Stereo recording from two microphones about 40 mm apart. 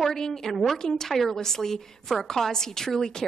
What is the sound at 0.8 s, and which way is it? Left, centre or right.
A woman's voice, centre.